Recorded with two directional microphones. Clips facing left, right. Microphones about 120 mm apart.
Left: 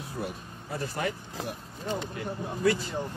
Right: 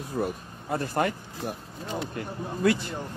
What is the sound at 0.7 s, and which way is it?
Speech, 55° right (ahead or behind).